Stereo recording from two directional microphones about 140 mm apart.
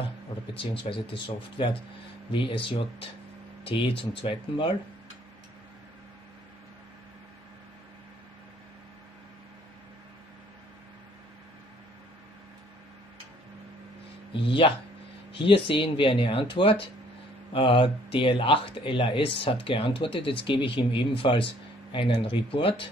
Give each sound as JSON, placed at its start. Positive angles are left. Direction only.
{"t": 0.6, "sound": "speech", "side_deg": 40}
{"t": 14.4, "sound": "speech", "side_deg": 40}